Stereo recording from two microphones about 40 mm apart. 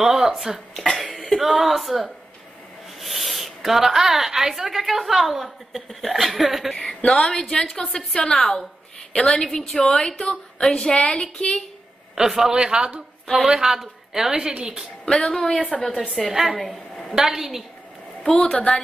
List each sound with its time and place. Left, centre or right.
0.0 s cough: centre
0.7 s speech: centre
1.4 s a woman's voice: centre
7.1 s a woman's voice: centre
8.3 s a woman's voice: centre
10.7 s a woman's voice: left
12.2 s a woman's voice: centre
12.5 s a man's voice: right
15.0 s a woman's voice: left
16.3 s a woman's voice: centre
16.5 s a sound: centre
17.3 s a woman's voice: centre
18.2 s a woman's voice: centre